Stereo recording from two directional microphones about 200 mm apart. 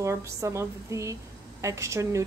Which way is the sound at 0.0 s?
15° right (ahead or behind).